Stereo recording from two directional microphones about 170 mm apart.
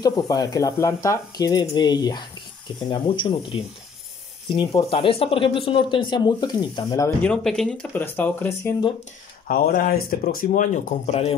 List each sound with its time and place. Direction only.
0.0 s speech: 25° left (ahead or behind)
7.2 s speech: 5° left (ahead or behind)
9.5 s speech: 55° left (ahead or behind); by 11.3 s 40° left (ahead or behind)